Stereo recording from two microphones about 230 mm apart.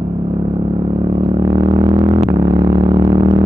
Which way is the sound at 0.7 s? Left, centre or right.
Centre.